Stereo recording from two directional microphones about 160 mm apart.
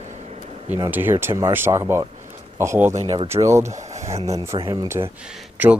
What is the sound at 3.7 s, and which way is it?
Speech, 45° right (ahead or behind).